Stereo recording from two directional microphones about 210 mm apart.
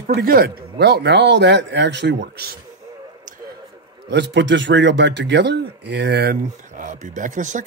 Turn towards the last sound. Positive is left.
turn(degrees=-35)  # may be behind; listen again after turning